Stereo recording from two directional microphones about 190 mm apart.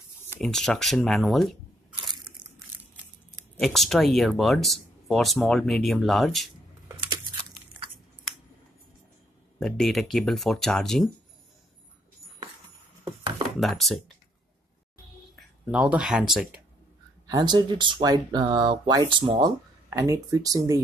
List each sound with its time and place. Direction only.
0.4 s speech: centre (ahead or behind)
3.5 s speech: centre (ahead or behind)
9.6 s speech: centre (ahead or behind)
13.6 s speech: centre (ahead or behind)
15.3 s speech: 5° right (ahead or behind)
17.3 s speech: 20° right (ahead or behind)